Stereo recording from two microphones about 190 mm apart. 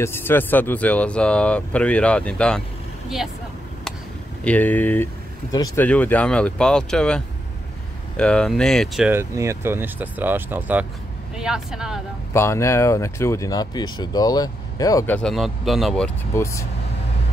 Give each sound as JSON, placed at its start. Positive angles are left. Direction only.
{"t": 0.0, "sound": "speech", "side_deg": 10}
{"t": 4.5, "sound": "speech", "side_deg": 10}
{"t": 5.5, "sound": "speech", "side_deg": 20}
{"t": 5.9, "sound": "speech", "side_deg": 10}
{"t": 9.1, "sound": "speech", "side_deg": -15}
{"t": 12.4, "sound": "speech", "side_deg": 15}